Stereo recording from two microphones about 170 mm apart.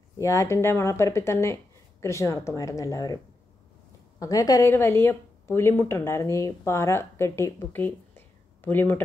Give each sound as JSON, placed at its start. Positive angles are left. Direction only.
{"t": 0.2, "sound": "speech", "side_deg": 15}
{"t": 4.2, "sound": "speech", "side_deg": 20}